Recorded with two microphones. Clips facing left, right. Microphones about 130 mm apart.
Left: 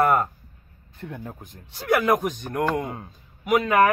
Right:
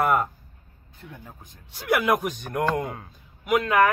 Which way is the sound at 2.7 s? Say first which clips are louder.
Even; 25° left (ahead or behind).